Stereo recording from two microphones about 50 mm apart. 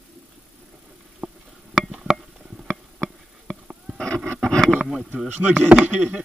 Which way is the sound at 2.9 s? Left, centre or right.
Centre.